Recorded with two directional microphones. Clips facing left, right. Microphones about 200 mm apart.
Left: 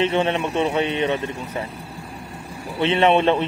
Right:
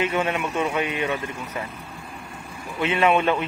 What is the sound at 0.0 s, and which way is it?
A man's voice, 30° left (ahead or behind).